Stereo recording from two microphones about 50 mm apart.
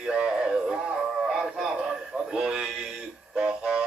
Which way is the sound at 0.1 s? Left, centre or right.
Centre.